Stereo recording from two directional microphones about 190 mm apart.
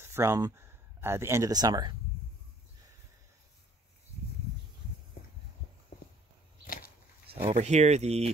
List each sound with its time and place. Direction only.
0.0 s speech: 15° right (ahead or behind)
6.6 s a sound: 50° left (ahead or behind)
7.2 s speech: 30° right (ahead or behind)